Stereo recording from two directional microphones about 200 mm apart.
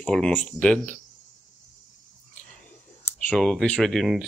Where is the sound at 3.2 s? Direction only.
5° left (ahead or behind).